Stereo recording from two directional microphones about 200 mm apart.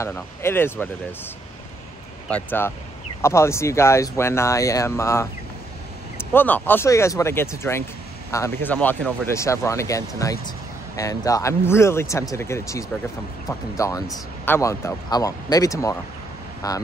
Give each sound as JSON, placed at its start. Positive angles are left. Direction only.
{"t": 0.0, "sound": "speech", "side_deg": 10}
{"t": 2.2, "sound": "speech", "side_deg": 10}
{"t": 6.3, "sound": "speech", "side_deg": 10}